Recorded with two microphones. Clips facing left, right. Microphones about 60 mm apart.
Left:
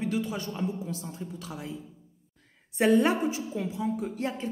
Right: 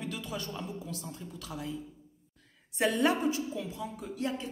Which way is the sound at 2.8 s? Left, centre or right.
Left.